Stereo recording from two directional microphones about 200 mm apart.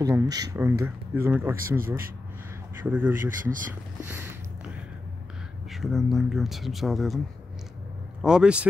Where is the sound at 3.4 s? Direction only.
40° right (ahead or behind).